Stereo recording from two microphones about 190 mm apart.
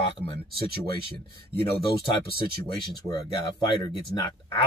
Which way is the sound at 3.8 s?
20° left (ahead or behind).